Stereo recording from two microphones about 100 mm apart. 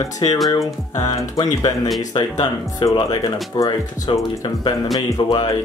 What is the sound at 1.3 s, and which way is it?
Speech, 45° left (ahead or behind).